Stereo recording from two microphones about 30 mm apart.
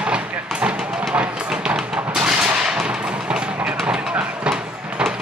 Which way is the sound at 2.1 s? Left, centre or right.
Right.